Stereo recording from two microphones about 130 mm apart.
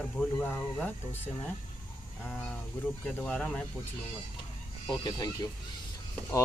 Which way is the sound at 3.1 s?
5° left (ahead or behind).